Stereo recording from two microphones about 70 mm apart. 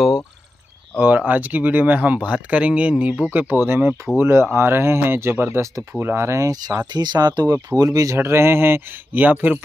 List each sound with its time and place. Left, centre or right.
0.9 s speech: right
6.9 s speech: right
8.2 s speech: right